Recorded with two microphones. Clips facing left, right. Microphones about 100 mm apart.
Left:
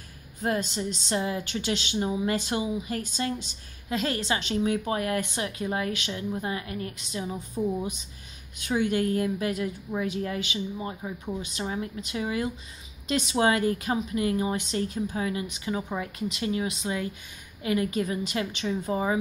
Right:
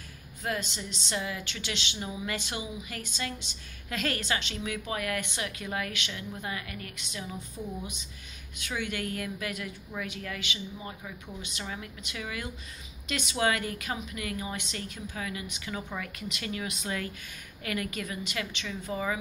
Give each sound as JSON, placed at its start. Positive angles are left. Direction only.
{"t": 0.4, "sound": "speech", "side_deg": 40}
{"t": 3.9, "sound": "a woman's voice", "side_deg": 25}
{"t": 4.4, "sound": "speech", "side_deg": 40}